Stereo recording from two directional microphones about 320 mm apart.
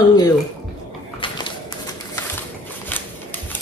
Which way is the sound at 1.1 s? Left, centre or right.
Centre.